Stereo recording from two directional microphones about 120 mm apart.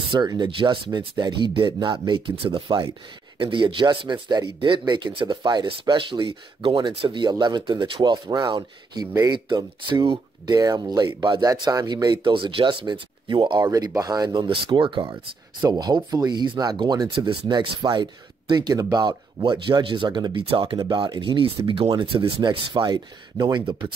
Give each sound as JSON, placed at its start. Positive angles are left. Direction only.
{"t": 0.1, "sound": "speech", "side_deg": -35}